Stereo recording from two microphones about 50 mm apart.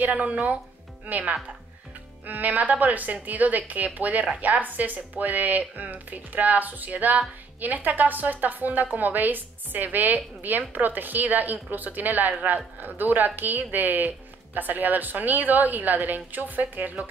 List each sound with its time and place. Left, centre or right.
0.0 s speech: right